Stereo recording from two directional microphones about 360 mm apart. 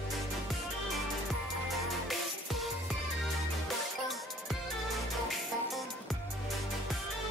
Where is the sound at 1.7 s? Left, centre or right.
Centre.